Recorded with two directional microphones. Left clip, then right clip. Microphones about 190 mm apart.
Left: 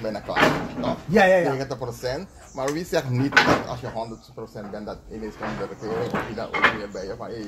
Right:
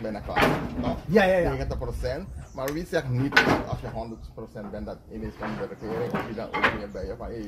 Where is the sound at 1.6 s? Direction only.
30° left (ahead or behind).